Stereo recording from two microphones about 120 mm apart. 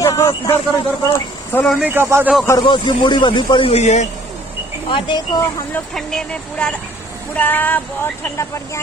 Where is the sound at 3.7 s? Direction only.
70° left (ahead or behind).